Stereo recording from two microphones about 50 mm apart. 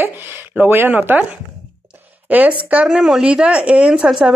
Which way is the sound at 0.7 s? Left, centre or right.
Right.